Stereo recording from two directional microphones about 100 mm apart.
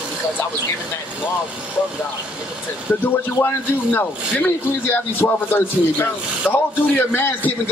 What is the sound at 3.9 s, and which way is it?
A man's voice, 20° left (ahead or behind).